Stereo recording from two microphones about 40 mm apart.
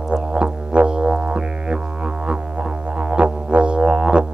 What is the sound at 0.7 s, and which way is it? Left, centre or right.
Music, right.